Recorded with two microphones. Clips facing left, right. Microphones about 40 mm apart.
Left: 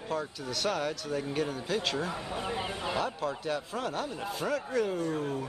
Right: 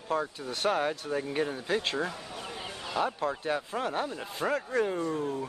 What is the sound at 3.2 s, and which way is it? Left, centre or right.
Speech, right.